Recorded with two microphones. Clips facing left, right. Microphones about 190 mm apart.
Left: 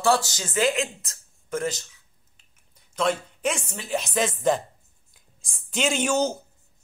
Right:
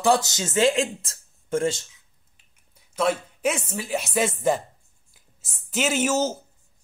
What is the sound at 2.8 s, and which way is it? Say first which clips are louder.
A woman's voice: right 1 dB; 5° right (ahead or behind).